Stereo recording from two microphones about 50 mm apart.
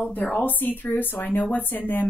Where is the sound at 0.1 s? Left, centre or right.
Left.